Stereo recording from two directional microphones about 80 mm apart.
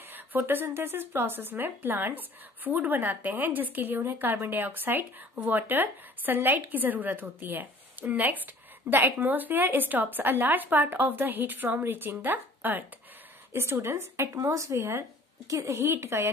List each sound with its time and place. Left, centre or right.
0.1 s a woman's voice: right